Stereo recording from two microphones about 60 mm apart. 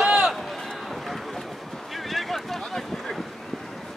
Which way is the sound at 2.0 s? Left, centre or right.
Centre.